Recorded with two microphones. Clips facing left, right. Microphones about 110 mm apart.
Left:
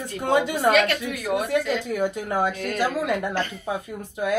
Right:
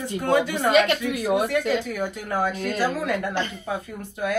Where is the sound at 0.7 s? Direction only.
20° right (ahead or behind).